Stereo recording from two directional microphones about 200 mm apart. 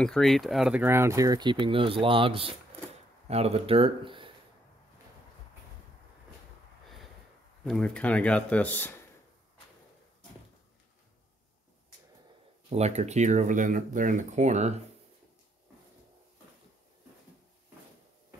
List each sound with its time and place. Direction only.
0.0 s speech: centre (ahead or behind); by 4.3 s 25° right (ahead or behind)
7.6 s speech: 5° left (ahead or behind)
12.6 s speech: 35° right (ahead or behind)